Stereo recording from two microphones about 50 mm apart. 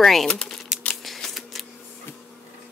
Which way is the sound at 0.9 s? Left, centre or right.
Centre.